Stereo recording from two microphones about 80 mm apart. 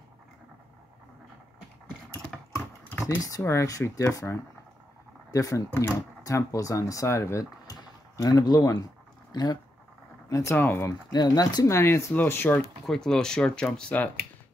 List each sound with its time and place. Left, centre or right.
2.3 s typing: centre
3.2 s speech: left
10.5 s speech: left
11.1 s speech: left
11.6 s speech: left
12.8 s speech: centre